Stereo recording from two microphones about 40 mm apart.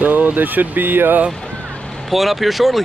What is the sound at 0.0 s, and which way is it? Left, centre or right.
Speech, right.